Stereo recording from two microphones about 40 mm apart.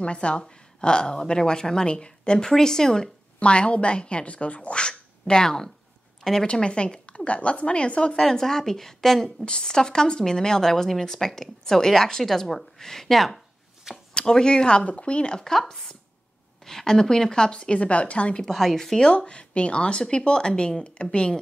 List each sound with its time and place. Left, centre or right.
0.0 s a woman's voice: left
3.3 s a woman's voice: left
6.4 s a woman's voice: left
8.2 s a woman's voice: centre
9.4 s a woman's voice: left; by 13.4 s centre
14.1 s a woman's voice: centre
16.6 s a woman's voice: centre; by 18.4 s left
18.4 s a woman's voice: centre
18.9 s a woman's voice: left